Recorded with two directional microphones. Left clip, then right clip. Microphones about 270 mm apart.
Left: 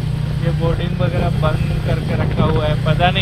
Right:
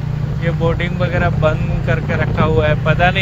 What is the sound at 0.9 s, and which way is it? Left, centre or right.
Speech, right.